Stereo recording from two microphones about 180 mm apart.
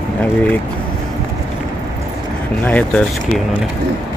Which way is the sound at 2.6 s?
10° left (ahead or behind).